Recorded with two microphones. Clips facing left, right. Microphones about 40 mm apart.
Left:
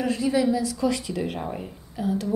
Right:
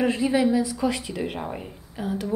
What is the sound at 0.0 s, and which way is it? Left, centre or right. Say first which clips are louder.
Speech: right 1 dB; right.